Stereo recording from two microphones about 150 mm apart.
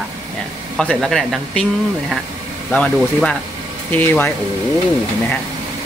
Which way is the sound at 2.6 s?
5° left (ahead or behind).